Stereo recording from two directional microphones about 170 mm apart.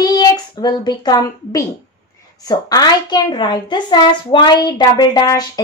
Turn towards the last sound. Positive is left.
turn(degrees=25)  # may be behind; listen again after turning